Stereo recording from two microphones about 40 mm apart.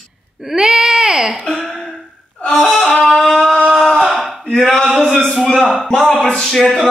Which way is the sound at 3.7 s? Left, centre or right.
Centre.